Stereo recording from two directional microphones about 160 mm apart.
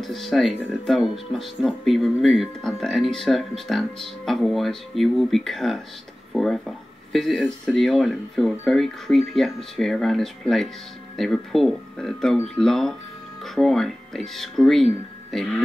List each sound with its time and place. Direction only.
0.0 s speech: centre (ahead or behind)